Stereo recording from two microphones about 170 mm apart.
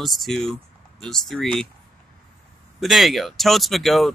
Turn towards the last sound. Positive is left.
turn(degrees=0)  # may be behind; listen again after turning